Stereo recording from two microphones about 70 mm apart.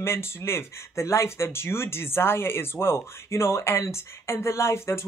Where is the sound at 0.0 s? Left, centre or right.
Left.